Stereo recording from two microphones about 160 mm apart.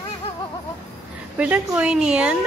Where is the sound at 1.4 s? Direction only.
10° right (ahead or behind).